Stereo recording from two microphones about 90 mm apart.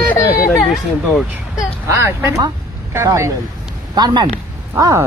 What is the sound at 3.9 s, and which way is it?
Speech, 50° right (ahead or behind).